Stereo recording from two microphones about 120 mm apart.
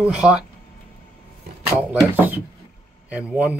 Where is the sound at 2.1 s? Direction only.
15° right (ahead or behind).